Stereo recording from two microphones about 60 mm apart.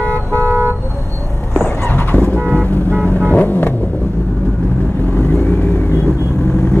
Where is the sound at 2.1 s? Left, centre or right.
Left.